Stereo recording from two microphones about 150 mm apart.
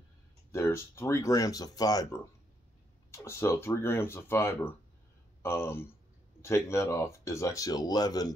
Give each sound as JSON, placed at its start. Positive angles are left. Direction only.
{"t": 0.5, "sound": "speech", "side_deg": 15}